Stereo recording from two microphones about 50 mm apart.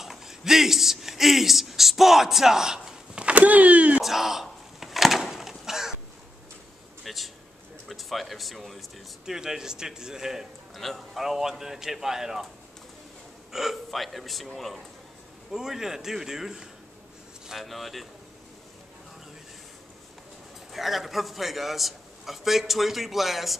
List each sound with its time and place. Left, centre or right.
0.0 s a man's voice: centre
3.3 s speech: right
4.0 s a sound: centre
7.1 s a man's voice: centre
9.2 s speech: centre
10.7 s speech: centre
13.5 s a man's voice: centre
15.5 s a man's voice: centre
20.7 s a man's voice: centre